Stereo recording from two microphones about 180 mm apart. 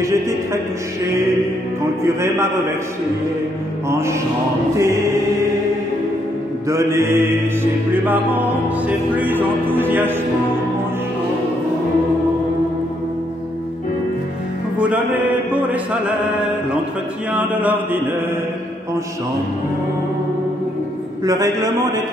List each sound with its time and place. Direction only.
0.0 s music: 15° right (ahead or behind)
2.0 s music: 15° right (ahead or behind)
3.9 s music: 15° right (ahead or behind)
6.7 s music: 15° right (ahead or behind)
14.8 s chant: 5° right (ahead or behind)
17.3 s music: 10° right (ahead or behind)
21.2 s a man's voice: 20° right (ahead or behind)